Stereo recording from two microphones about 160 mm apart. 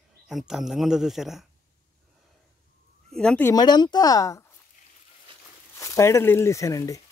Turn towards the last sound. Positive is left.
turn(degrees=20)  # may be behind; listen again after turning